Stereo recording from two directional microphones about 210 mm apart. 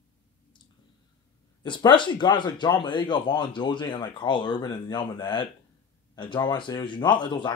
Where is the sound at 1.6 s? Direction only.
20° left (ahead or behind).